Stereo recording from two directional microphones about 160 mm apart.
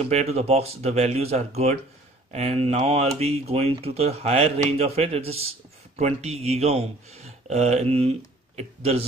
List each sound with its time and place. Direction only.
0.0 s speech: 40° right (ahead or behind)